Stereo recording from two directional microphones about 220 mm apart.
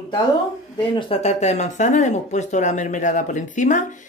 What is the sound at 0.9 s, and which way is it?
Speech, 25° left (ahead or behind).